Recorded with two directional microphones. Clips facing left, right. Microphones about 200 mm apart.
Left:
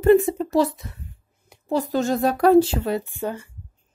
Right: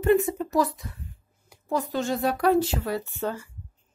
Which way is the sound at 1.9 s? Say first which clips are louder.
Left 5 dB; 40° left (ahead or behind).